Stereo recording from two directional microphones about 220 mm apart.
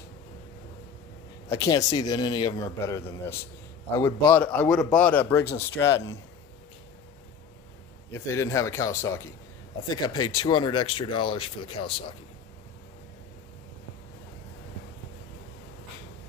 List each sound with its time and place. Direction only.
1.5 s a man's voice: 15° left (ahead or behind)
8.1 s a man's voice: 15° left (ahead or behind)